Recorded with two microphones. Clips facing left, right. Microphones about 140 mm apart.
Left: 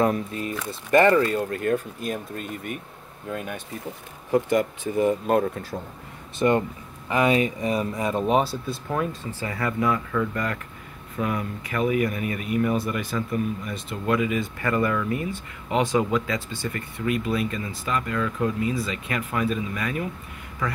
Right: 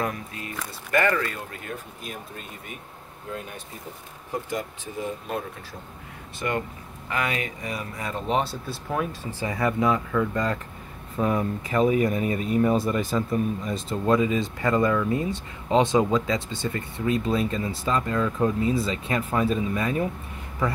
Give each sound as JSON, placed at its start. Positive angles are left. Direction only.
{"t": 0.0, "sound": "speech", "side_deg": 30}
{"t": 1.5, "sound": "speech", "side_deg": 50}
{"t": 4.3, "sound": "speech", "side_deg": 65}
{"t": 6.4, "sound": "speech", "side_deg": 25}
{"t": 8.4, "sound": "speech", "side_deg": 0}
{"t": 9.3, "sound": "speech", "side_deg": -15}